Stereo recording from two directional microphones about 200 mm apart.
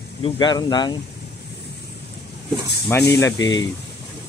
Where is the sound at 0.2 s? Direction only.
20° left (ahead or behind).